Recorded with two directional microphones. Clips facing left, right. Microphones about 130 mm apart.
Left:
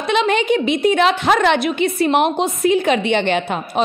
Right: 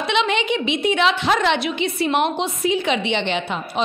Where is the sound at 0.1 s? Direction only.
45° left (ahead or behind).